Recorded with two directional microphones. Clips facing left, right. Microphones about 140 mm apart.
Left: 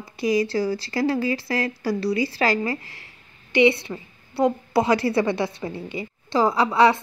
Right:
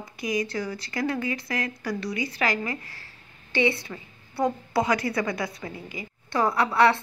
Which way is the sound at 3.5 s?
20° left (ahead or behind).